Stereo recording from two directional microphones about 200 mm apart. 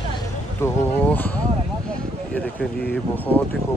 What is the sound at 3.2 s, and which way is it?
Speech, 10° left (ahead or behind).